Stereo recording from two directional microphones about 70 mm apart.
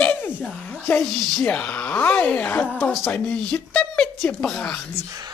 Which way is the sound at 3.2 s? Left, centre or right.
Centre.